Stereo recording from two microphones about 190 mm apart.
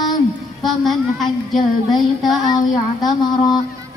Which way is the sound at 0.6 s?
Centre (ahead or behind).